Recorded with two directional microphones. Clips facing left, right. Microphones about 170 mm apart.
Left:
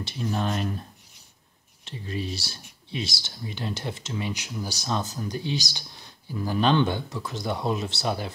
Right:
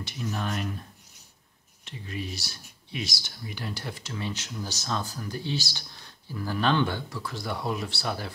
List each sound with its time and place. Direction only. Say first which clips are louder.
0.0 s speech: left 4 dB; 30° left (ahead or behind)
1.9 s speech: left 4 dB; 30° left (ahead or behind)